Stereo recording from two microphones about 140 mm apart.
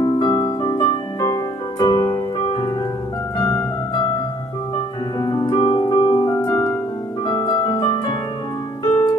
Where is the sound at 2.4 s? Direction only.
40° left (ahead or behind).